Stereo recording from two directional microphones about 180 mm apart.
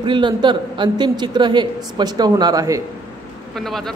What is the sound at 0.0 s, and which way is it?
A man's voice, 25° right (ahead or behind).